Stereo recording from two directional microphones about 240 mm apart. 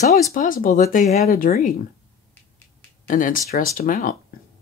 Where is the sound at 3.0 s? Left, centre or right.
Left.